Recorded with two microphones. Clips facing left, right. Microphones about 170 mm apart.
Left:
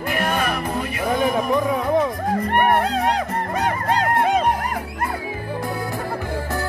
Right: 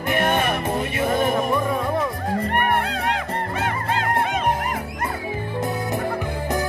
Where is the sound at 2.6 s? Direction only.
35° left (ahead or behind).